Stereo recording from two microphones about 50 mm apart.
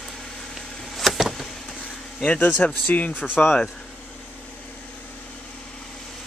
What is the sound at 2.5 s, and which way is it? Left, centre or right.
Speech, left.